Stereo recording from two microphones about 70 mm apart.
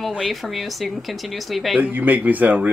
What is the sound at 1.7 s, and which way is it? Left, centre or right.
Speech, right.